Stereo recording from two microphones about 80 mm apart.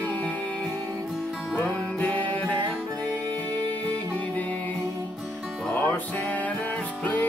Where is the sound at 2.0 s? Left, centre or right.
Left.